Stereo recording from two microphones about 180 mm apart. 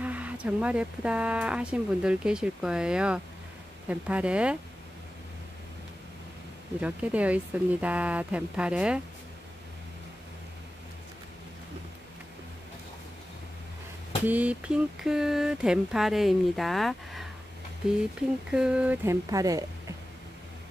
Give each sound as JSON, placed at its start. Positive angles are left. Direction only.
{"t": 0.0, "sound": "speech", "side_deg": -10}
{"t": 6.8, "sound": "speech", "side_deg": -5}
{"t": 14.2, "sound": "speech", "side_deg": -10}
{"t": 18.5, "sound": "speech", "side_deg": -5}
{"t": 19.3, "sound": "speech", "side_deg": -20}